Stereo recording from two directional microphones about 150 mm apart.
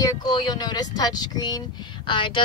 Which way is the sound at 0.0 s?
30° left (ahead or behind).